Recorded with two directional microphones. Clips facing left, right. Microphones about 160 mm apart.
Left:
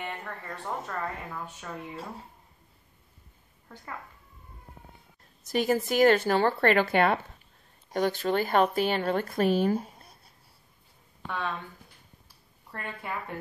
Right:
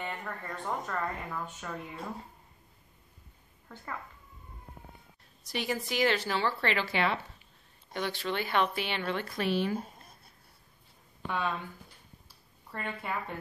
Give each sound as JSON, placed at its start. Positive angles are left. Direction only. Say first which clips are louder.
{"t": 0.2, "sound": "speech", "louder": "even", "side_deg": 5}
{"t": 5.4, "sound": "speech", "louder": "left 8 dB", "side_deg": 45}
{"t": 11.2, "sound": "speech", "louder": "right 1 dB", "side_deg": -5}
{"t": 12.7, "sound": "speech", "louder": "right 1 dB", "side_deg": 0}